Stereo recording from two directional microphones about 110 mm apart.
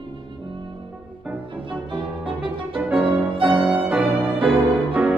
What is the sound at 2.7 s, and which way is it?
Music, 10° right (ahead or behind).